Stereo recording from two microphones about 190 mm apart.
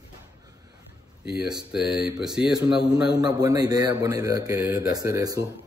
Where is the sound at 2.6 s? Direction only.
20° right (ahead or behind).